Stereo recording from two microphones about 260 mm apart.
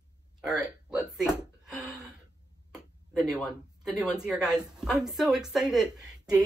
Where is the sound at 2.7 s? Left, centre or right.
Centre.